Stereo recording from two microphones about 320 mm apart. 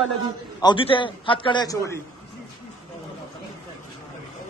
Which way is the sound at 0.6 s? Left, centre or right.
Centre.